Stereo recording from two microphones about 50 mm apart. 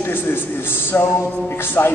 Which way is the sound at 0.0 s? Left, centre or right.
Left.